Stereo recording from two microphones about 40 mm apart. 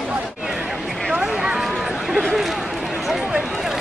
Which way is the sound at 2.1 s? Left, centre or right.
Centre.